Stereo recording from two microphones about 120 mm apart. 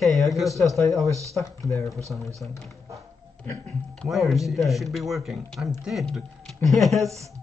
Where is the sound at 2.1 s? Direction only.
5° left (ahead or behind).